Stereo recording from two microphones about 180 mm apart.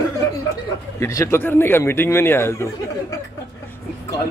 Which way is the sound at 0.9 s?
15° left (ahead or behind).